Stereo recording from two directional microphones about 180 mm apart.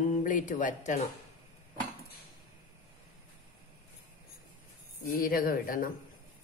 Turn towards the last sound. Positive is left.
turn(degrees=50)  # may be behind; listen again after turning